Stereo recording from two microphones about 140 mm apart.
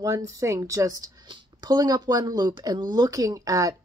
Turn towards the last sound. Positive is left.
turn(degrees=-25)  # may be behind; listen again after turning